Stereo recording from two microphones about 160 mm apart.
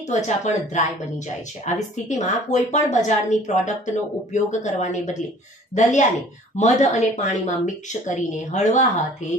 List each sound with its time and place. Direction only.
0.1 s speech: 45° left (ahead or behind)